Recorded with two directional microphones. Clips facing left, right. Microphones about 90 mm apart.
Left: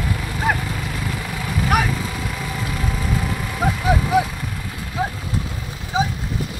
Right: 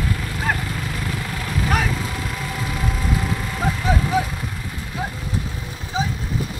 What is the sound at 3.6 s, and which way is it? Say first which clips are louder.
Vehicle: left 3 dB; 10° left (ahead or behind).